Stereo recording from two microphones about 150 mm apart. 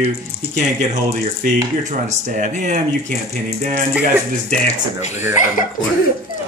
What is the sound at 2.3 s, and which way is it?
Speech, 55° right (ahead or behind).